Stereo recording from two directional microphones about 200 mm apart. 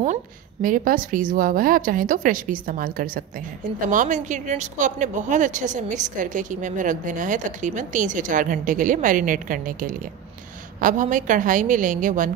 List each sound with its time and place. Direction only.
0.0 s a woman's voice: 40° right (ahead or behind)